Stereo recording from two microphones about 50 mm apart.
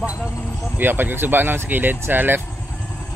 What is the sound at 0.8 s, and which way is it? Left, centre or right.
Speech, right.